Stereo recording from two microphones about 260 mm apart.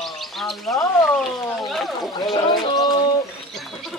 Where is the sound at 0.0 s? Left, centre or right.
Centre.